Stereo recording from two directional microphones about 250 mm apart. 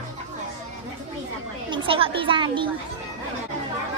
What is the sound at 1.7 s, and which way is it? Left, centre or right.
A woman's voice, right.